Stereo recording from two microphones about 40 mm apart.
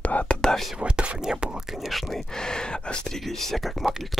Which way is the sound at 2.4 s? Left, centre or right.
Centre.